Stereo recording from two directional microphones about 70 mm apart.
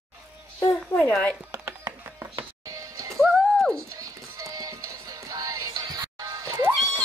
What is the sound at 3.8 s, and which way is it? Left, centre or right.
Music, right.